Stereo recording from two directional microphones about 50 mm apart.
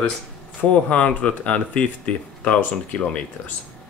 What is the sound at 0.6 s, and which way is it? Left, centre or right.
Speech, left.